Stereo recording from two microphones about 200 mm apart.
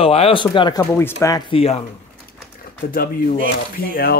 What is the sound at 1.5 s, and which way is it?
Speech, 30° left (ahead or behind).